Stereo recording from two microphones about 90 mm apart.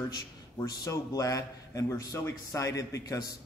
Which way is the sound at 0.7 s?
40° left (ahead or behind).